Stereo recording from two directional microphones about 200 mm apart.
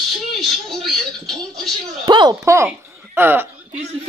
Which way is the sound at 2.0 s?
20° right (ahead or behind).